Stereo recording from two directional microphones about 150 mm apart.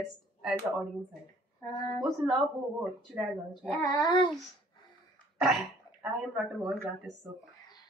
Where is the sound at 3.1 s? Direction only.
5° right (ahead or behind).